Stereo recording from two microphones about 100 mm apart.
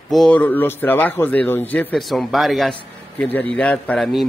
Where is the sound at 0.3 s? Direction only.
20° left (ahead or behind).